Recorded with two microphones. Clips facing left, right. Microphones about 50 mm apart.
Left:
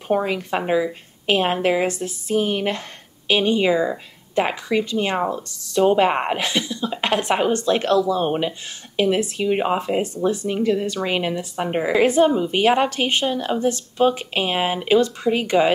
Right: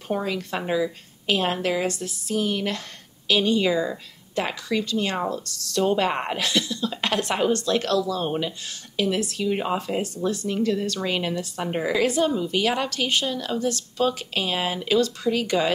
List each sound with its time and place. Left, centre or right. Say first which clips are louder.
0.1 s speech: left 6 dB; left